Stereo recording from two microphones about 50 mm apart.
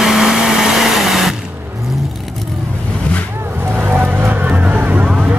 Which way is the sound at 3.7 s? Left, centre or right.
Right.